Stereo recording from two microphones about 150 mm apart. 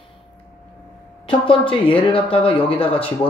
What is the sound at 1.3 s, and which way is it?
Speech, 35° left (ahead or behind).